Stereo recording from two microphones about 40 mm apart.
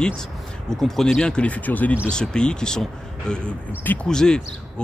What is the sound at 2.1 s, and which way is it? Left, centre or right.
Speech, centre.